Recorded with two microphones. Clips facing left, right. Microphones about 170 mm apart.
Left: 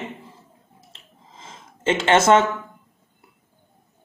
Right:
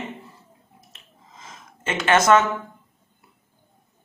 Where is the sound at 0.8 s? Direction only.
25° left (ahead or behind).